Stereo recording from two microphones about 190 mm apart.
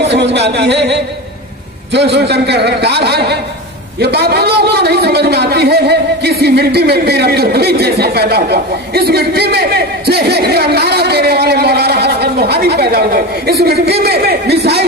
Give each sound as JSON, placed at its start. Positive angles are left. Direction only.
{"t": 0.0, "sound": "a man's voice", "side_deg": -65}